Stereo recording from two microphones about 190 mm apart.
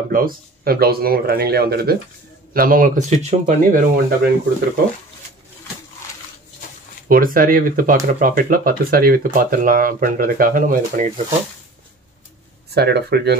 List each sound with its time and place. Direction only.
0.1 s speech: 50° right (ahead or behind)
7.1 s speech: 50° right (ahead or behind)
12.6 s speech: 60° right (ahead or behind)